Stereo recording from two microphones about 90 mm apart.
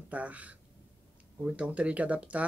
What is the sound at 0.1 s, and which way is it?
Speech, 15° right (ahead or behind).